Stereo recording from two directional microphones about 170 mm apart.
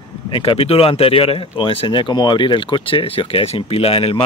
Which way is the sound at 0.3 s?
30° left (ahead or behind).